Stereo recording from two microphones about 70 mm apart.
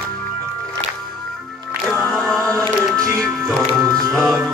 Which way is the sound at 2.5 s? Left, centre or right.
Right.